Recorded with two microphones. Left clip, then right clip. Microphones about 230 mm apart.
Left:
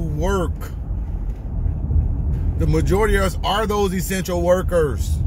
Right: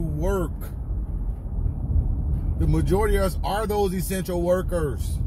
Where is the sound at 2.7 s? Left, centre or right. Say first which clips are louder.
Left 4 dB; left.